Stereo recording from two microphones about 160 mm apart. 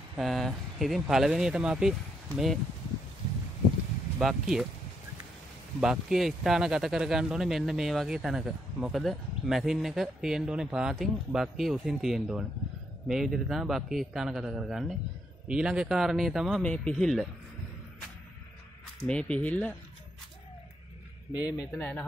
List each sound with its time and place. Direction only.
0.2 s speech: centre (ahead or behind)
4.2 s speech: centre (ahead or behind)
5.8 s speech: 5° right (ahead or behind)
19.0 s speech: 5° left (ahead or behind)
21.4 s a man's voice: 20° left (ahead or behind)